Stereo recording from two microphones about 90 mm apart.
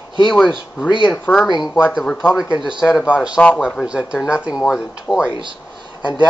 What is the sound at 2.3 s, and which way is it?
Speech, 10° right (ahead or behind).